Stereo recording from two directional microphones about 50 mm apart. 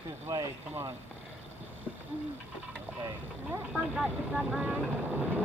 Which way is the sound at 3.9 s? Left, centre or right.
Centre.